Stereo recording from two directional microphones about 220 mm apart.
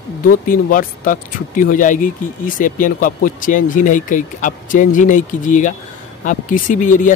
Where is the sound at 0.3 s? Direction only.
40° left (ahead or behind).